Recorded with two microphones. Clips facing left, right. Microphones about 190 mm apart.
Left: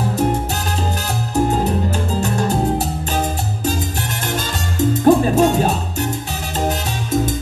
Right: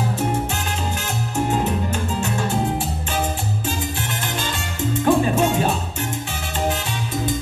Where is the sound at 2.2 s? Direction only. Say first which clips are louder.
Left 4 dB; 40° left (ahead or behind).